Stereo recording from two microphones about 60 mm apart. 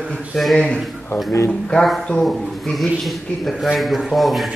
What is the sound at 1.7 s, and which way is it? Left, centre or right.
Speech, centre.